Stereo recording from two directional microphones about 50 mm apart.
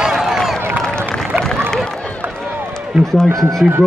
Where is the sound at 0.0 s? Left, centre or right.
Centre.